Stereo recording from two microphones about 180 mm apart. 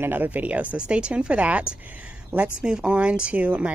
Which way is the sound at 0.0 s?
10° right (ahead or behind).